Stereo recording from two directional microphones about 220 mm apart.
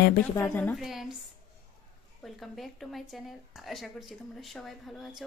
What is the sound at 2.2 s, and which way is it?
Speech, centre (ahead or behind).